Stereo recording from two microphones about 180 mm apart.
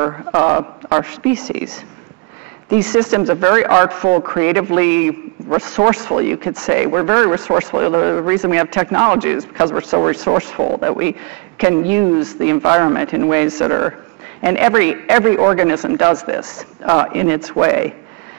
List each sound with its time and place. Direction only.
0.0 s speech: 15° right (ahead or behind)
2.8 s speech: 5° right (ahead or behind)